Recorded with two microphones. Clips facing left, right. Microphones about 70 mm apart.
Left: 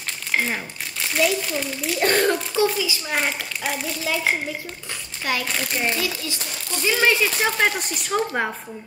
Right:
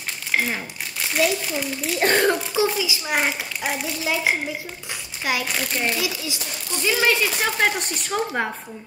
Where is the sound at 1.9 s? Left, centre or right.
Centre.